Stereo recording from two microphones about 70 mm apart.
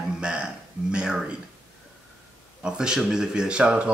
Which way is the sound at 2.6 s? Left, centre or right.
Centre.